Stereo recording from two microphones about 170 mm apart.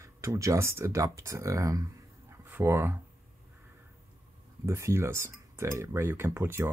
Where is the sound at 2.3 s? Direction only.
15° right (ahead or behind).